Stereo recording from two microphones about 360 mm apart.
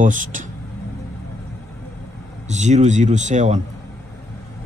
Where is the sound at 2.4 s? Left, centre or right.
Centre.